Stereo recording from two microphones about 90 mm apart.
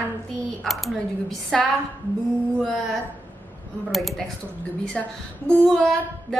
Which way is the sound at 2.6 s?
5° left (ahead or behind).